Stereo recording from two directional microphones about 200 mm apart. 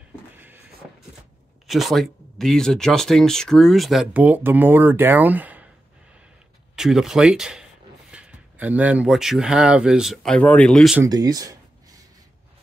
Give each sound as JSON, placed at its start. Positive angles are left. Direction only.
{"t": 1.7, "sound": "speech", "side_deg": 0}
{"t": 6.7, "sound": "speech", "side_deg": 0}
{"t": 11.0, "sound": "speech", "side_deg": -20}